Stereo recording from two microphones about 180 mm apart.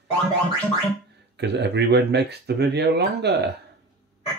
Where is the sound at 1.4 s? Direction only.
70° right (ahead or behind).